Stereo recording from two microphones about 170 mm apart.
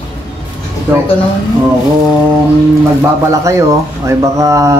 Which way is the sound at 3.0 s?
15° right (ahead or behind).